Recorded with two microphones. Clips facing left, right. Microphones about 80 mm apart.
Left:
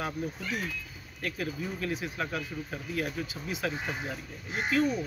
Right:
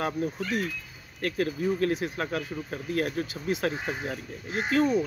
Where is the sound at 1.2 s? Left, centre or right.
Right.